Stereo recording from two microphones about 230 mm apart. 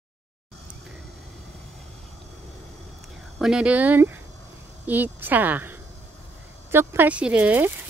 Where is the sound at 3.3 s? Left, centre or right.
Centre.